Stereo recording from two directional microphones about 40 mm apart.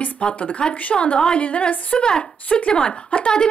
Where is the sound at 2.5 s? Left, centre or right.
Left.